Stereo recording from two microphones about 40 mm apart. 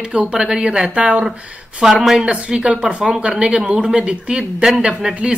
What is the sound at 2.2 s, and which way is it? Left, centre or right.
A woman's voice, right.